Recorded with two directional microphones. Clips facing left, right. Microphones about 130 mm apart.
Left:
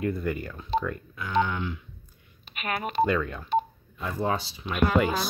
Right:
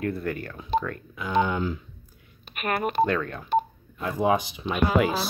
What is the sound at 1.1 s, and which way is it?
Speech, 15° right (ahead or behind).